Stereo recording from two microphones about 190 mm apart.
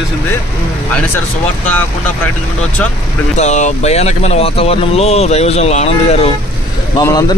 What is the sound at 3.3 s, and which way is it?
Speech, 40° left (ahead or behind).